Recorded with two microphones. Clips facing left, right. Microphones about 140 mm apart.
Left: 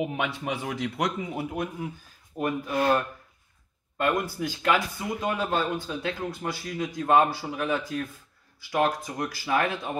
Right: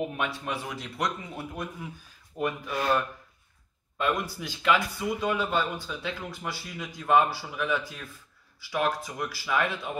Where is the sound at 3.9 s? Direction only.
50° left (ahead or behind).